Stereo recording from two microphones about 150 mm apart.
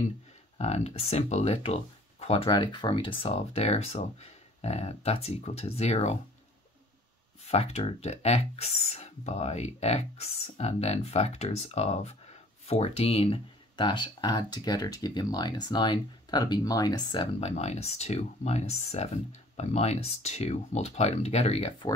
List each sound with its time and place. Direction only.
0.6 s speech: 45° left (ahead or behind)
7.4 s speech: 45° left (ahead or behind)